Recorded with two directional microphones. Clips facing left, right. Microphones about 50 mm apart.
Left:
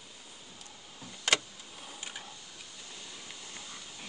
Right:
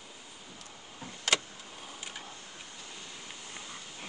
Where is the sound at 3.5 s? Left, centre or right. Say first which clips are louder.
Right 2 dB; right.